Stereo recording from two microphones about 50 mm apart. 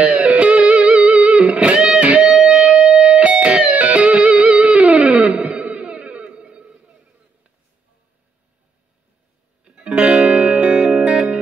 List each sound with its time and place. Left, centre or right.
0.0 s music: right
2.2 s music: centre
9.7 s music: centre